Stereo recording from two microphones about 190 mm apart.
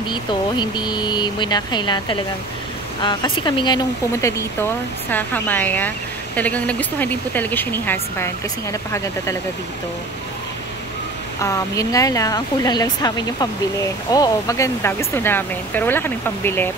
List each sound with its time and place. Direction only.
0.1 s speech: 25° left (ahead or behind)
11.4 s speech: 15° left (ahead or behind)